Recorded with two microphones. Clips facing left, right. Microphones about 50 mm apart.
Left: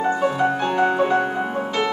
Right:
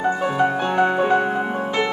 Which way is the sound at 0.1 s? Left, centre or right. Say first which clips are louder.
Even; centre.